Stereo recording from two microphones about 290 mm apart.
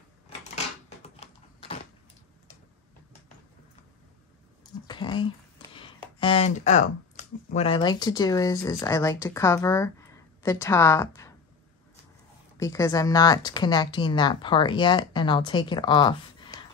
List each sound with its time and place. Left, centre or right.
0.4 s a sound: left
4.8 s speech: centre
12.5 s speech: centre